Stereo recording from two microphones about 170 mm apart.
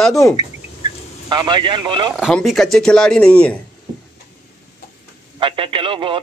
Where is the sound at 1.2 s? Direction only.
25° right (ahead or behind).